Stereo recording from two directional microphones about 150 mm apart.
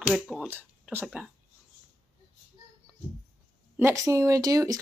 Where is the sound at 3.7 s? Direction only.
20° right (ahead or behind).